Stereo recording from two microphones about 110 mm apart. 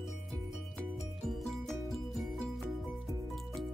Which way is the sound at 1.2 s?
Centre (ahead or behind).